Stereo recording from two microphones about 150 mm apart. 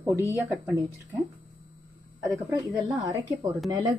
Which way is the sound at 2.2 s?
20° right (ahead or behind).